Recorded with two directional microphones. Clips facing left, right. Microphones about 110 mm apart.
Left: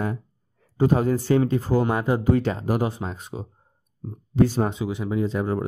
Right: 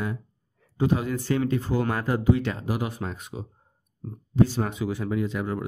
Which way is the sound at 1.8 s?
20° left (ahead or behind).